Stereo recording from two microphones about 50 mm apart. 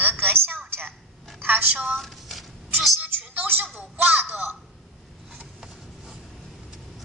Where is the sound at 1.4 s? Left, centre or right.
Right.